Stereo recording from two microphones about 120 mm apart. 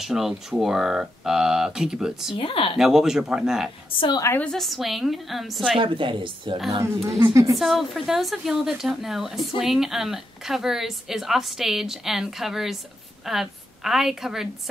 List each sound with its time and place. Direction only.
0.0 s a woman's voice: 5° right (ahead or behind)
2.3 s speech: 50° left (ahead or behind)
2.8 s a woman's voice: 5° right (ahead or behind)
4.2 s a woman's voice: 20° left (ahead or behind)
4.5 s a woman's voice: centre (ahead or behind)
5.8 s speech: 45° right (ahead or behind)
7.5 s a woman's voice: centre (ahead or behind)